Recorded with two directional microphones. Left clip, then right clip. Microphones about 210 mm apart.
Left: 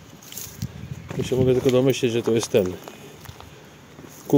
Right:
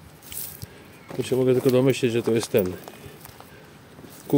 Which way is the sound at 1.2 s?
10° right (ahead or behind).